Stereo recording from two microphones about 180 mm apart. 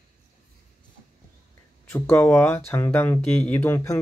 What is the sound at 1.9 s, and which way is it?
Speech, 10° left (ahead or behind).